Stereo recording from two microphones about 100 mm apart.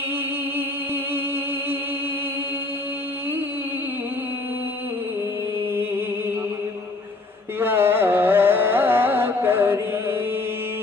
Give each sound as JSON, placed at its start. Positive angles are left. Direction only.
{"t": 7.6, "sound": "carnatic music", "side_deg": -20}